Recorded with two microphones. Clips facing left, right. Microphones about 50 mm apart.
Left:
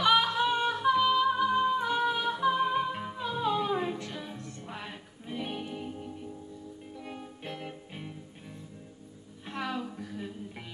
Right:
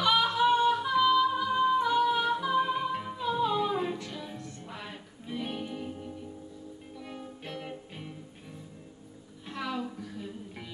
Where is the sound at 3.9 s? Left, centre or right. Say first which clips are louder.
Even; left.